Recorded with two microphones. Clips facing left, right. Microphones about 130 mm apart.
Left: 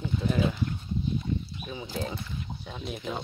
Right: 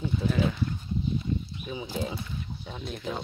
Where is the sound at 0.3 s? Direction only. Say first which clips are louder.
Left 1 dB; 15° left (ahead or behind).